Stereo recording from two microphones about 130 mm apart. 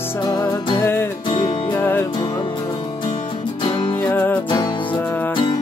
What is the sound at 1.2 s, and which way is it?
Music, 35° left (ahead or behind).